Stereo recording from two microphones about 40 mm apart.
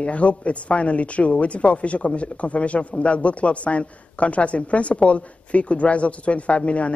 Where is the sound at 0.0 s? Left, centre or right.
Left.